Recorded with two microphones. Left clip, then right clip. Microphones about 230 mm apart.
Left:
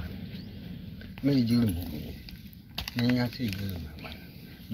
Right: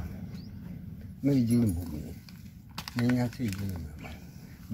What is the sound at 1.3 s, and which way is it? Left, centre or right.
Speech, centre.